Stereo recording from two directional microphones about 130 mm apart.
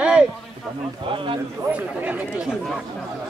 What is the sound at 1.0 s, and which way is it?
Speech, 40° right (ahead or behind).